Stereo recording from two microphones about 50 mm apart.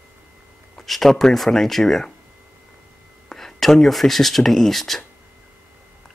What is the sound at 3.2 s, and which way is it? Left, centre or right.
Speech, centre.